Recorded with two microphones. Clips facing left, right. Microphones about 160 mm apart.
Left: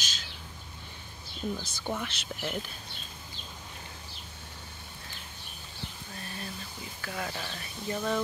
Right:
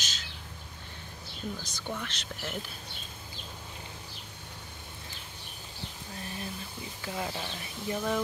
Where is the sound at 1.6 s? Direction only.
10° left (ahead or behind).